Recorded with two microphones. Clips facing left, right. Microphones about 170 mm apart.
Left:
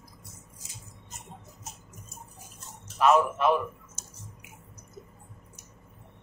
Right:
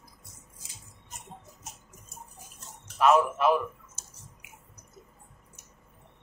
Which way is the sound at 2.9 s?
Centre (ahead or behind).